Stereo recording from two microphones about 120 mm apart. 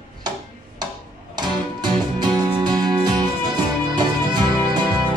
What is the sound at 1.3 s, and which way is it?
Music, 35° right (ahead or behind).